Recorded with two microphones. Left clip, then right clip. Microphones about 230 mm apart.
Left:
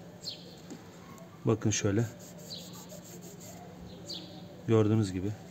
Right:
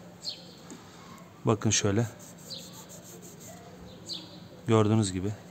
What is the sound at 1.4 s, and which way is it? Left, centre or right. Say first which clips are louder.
Speech: right 3 dB; right.